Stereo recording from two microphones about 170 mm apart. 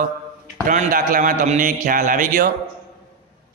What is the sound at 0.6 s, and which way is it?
Speech, 50° right (ahead or behind).